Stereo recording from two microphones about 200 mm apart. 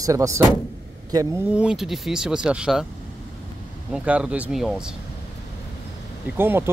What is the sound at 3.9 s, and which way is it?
Speech, 5° right (ahead or behind).